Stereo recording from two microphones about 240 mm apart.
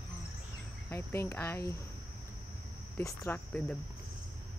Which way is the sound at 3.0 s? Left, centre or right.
Centre.